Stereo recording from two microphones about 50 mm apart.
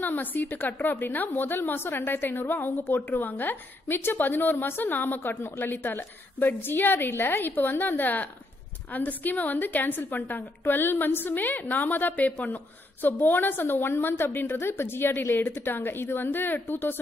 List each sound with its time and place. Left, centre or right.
0.0 s a woman's voice: left
12.3 s speech: left
13.0 s a woman's voice: left